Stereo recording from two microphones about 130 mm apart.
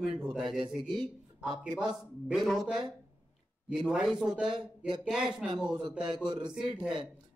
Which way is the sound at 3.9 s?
5° right (ahead or behind).